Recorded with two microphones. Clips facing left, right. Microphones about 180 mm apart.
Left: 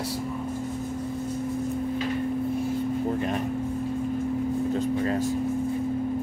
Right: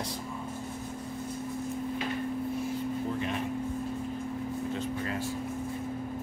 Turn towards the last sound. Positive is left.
turn(degrees=40)  # may be behind; listen again after turning